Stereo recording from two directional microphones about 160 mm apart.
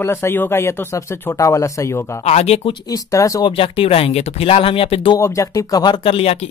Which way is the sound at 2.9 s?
20° left (ahead or behind).